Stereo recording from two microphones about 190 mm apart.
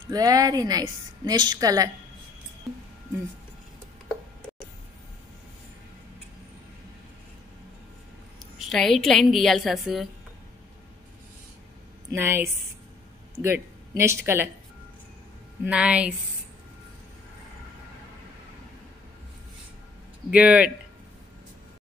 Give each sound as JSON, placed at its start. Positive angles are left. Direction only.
{"t": 0.1, "sound": "a woman's voice", "side_deg": -20}
{"t": 8.5, "sound": "a woman's voice", "side_deg": 0}
{"t": 12.1, "sound": "speech", "side_deg": -10}
{"t": 15.6, "sound": "speech", "side_deg": -5}
{"t": 20.2, "sound": "speech", "side_deg": -5}